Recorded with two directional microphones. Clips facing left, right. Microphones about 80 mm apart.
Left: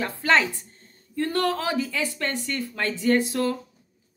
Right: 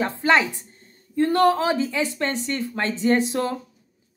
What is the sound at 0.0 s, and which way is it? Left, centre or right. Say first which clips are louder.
Speech: right 2 dB; right.